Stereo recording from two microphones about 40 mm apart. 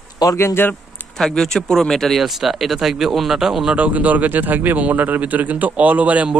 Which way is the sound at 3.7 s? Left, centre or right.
Right.